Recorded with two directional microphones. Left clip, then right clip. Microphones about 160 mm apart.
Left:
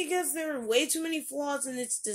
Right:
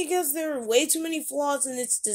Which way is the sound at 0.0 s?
45° right (ahead or behind).